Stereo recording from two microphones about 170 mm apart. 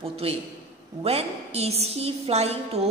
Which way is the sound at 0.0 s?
35° right (ahead or behind).